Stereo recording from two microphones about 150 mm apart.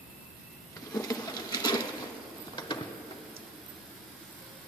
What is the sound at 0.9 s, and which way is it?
Patter, 25° left (ahead or behind).